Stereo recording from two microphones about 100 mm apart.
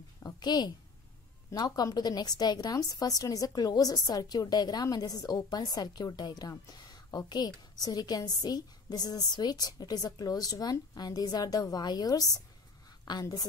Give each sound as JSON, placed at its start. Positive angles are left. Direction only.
{"t": 0.2, "sound": "a woman's voice", "side_deg": 45}